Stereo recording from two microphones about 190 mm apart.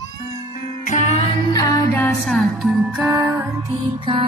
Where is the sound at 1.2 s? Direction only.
25° left (ahead or behind).